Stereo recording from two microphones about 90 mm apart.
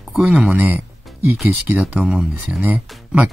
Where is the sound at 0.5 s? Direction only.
20° right (ahead or behind).